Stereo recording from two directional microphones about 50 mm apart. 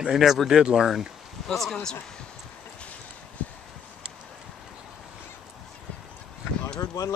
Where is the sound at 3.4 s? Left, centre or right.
Left.